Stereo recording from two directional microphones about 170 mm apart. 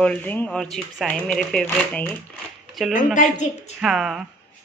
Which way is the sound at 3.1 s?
45° left (ahead or behind).